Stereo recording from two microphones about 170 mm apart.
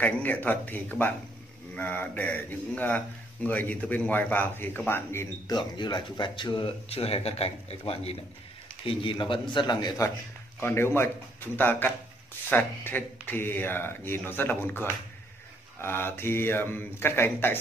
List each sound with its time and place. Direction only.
0.0 s speech: 10° left (ahead or behind)
5.6 s a man's voice: 25° left (ahead or behind)